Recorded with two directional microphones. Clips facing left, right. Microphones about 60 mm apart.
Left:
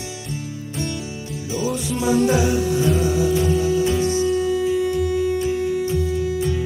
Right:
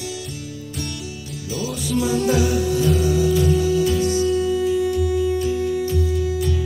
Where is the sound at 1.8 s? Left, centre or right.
Left.